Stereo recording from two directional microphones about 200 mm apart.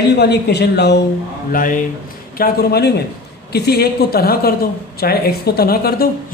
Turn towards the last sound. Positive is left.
turn(degrees=50)  # may be behind; listen again after turning